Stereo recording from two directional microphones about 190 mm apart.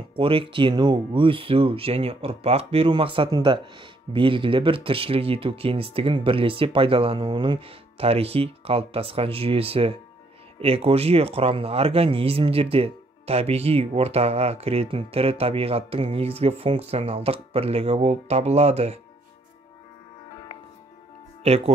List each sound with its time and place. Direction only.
0.1 s speech: 25° right (ahead or behind)
21.5 s speech: 30° right (ahead or behind)